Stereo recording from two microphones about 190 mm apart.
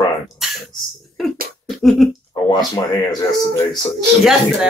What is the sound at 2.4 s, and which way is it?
Speech, 20° left (ahead or behind).